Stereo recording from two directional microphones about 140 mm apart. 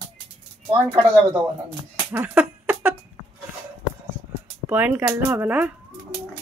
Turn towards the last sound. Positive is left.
turn(degrees=-10)  # may be behind; listen again after turning